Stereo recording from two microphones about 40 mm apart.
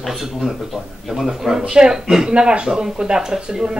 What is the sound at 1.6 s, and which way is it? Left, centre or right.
Speech, centre.